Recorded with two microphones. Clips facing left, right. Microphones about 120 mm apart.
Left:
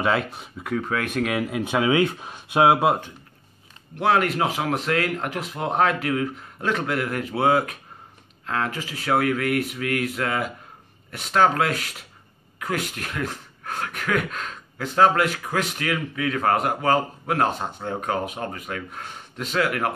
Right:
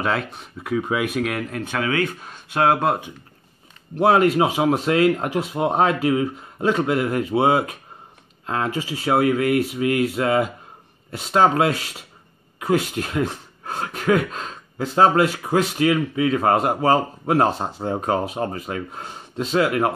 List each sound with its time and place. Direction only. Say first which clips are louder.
0.0 s speech: left 1 dB; centre (ahead or behind)
0.7 s speech: right 3 dB; 10° right (ahead or behind); by 3.0 s 5° left (ahead or behind)
4.0 s speech: right 5 dB; 25° right (ahead or behind)